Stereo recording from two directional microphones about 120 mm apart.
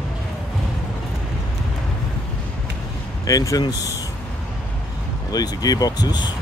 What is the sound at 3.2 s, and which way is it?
Speech, 30° left (ahead or behind).